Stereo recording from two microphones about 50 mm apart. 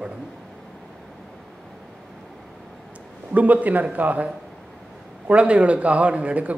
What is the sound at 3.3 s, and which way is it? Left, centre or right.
A man's voice, right.